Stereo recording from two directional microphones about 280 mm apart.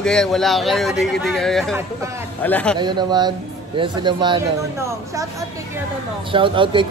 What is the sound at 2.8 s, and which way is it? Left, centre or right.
A man's voice, centre.